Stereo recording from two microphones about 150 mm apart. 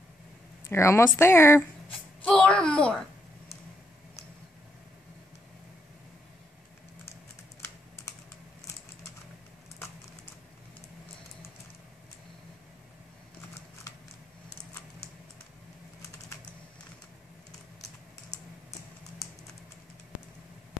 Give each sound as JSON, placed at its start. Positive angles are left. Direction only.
{"t": 0.7, "sound": "speech", "side_deg": 20}
{"t": 2.2, "sound": "speech", "side_deg": 5}